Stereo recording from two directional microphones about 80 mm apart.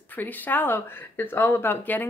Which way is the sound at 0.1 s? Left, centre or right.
Left.